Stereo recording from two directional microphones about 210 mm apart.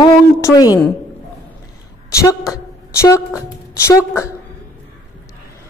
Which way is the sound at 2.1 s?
15° left (ahead or behind).